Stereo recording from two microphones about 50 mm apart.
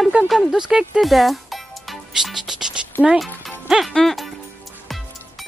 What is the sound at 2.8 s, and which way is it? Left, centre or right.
Music, centre.